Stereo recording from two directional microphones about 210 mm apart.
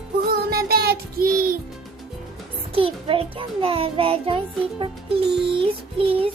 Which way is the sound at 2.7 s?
25° right (ahead or behind).